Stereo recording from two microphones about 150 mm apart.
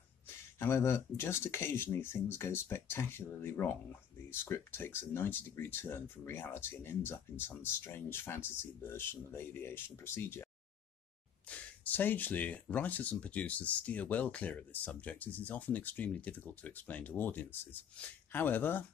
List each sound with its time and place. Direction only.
0.6 s speech: 15° left (ahead or behind)